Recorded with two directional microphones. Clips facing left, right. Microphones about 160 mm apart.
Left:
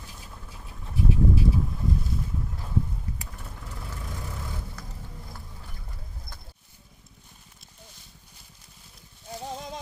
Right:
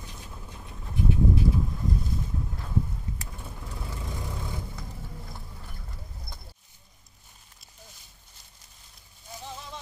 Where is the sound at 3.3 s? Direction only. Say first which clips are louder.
Right 1 dB; 10° right (ahead or behind).